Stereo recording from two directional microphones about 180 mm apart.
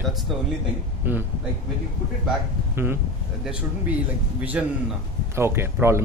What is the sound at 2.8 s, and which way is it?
Speech, 15° right (ahead or behind).